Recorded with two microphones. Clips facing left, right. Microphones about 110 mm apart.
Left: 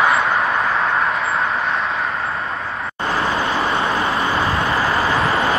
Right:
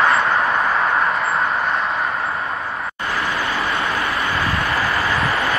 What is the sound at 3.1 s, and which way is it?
Vehicle, 30° left (ahead or behind).